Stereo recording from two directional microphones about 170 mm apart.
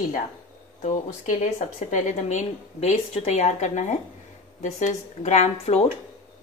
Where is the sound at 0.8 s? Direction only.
45° left (ahead or behind).